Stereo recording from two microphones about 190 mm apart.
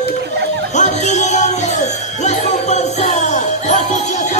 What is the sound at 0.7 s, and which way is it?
Music, 40° left (ahead or behind).